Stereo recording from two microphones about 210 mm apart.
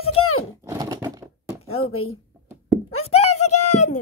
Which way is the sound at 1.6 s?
30° left (ahead or behind).